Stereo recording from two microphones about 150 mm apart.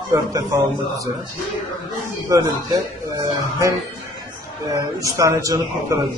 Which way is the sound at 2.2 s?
25° right (ahead or behind).